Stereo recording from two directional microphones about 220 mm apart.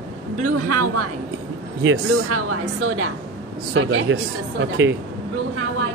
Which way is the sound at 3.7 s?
65° right (ahead or behind).